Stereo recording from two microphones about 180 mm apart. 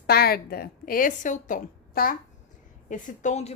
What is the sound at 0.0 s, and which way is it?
A woman's voice, 60° left (ahead or behind).